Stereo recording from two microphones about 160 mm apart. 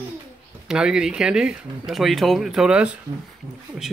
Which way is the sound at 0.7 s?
5° right (ahead or behind).